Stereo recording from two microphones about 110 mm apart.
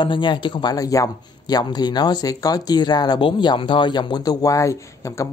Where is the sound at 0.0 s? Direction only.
45° left (ahead or behind).